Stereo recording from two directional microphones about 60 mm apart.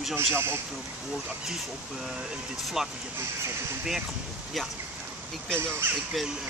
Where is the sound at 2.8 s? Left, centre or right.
Centre.